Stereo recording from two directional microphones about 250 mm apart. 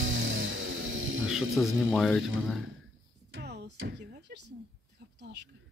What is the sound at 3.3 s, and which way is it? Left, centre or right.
Music, right.